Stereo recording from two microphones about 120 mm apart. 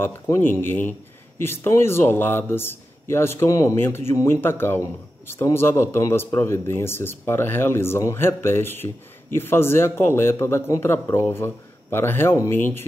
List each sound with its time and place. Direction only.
0.0 s a man's voice: 20° left (ahead or behind)